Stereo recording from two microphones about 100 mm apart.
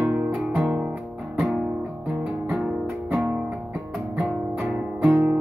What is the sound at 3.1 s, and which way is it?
Music, 25° right (ahead or behind).